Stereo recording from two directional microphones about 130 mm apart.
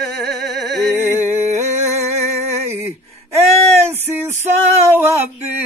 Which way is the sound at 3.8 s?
20° right (ahead or behind).